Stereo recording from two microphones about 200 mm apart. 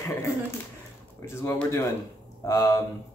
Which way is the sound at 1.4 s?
10° left (ahead or behind).